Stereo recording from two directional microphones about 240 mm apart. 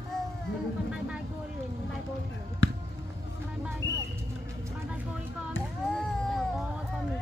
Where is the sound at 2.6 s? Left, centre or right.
Left.